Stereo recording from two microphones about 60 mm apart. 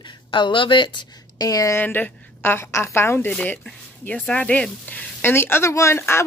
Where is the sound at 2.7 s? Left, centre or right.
Left.